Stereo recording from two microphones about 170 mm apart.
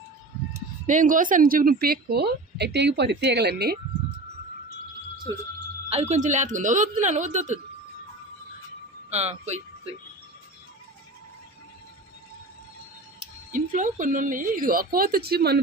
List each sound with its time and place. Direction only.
0.8 s a woman's voice: 50° right (ahead or behind); by 3.7 s 70° right (ahead or behind)
5.9 s a woman's voice: 40° right (ahead or behind)
9.1 s speech: 40° right (ahead or behind)
13.5 s speech: 50° right (ahead or behind); by 15.6 s 70° right (ahead or behind)